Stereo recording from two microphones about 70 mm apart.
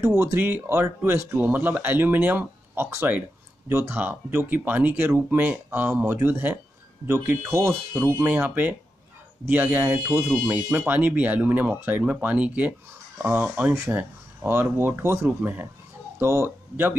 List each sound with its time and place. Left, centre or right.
0.2 s speech: right
1.3 s speech: right
4.0 s speech: right
7.1 s speech: right
10.4 s speech: right
15.2 s speech: right
16.2 s speech: right
16.4 s speech: right